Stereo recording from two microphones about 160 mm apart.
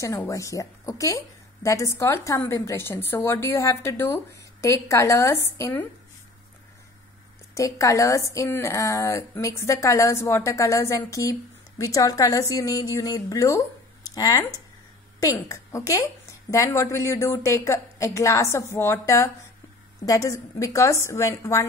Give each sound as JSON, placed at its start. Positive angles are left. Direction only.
{"t": 0.0, "sound": "a woman's voice", "side_deg": 20}
{"t": 7.5, "sound": "a woman's voice", "side_deg": 20}